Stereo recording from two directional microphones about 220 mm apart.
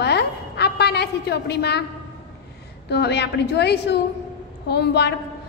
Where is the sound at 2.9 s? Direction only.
50° left (ahead or behind).